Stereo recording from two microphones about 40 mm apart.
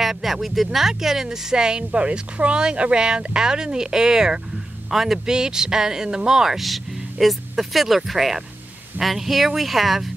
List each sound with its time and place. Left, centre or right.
0.0 s speech: centre
6.6 s speech: centre